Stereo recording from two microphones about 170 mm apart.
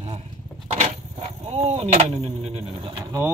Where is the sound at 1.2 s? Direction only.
35° right (ahead or behind).